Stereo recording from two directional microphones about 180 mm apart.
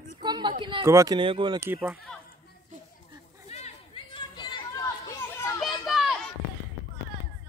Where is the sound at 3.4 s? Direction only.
35° left (ahead or behind); by 5.5 s 15° left (ahead or behind).